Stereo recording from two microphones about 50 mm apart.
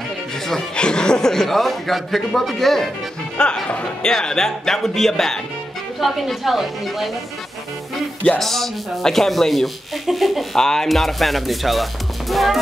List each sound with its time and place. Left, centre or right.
0.5 s a man's voice: centre
3.6 s speech: left
4.1 s a man's voice: centre
8.3 s speech: centre
10.6 s a man's voice: centre